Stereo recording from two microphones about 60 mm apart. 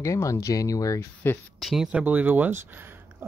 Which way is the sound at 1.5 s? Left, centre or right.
Centre.